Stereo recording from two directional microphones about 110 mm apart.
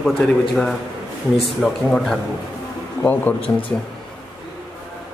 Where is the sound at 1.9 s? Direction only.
5° left (ahead or behind).